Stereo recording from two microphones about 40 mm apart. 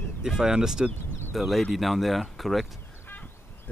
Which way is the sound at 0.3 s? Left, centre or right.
Centre.